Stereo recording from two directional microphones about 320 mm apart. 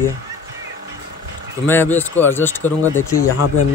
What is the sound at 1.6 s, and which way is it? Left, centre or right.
Speech, centre.